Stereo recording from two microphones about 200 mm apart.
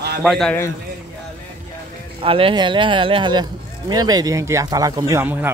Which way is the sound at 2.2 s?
25° right (ahead or behind).